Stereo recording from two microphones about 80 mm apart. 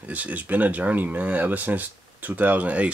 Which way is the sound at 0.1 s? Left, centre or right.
Centre.